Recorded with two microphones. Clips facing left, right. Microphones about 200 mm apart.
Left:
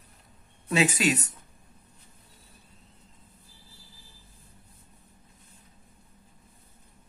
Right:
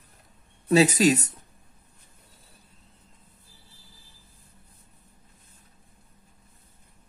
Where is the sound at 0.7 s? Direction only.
40° right (ahead or behind).